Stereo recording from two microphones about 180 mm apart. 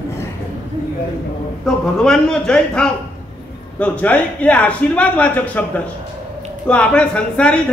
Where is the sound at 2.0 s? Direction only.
5° left (ahead or behind).